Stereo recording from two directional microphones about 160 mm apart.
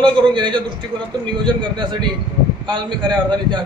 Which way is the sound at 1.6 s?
30° right (ahead or behind).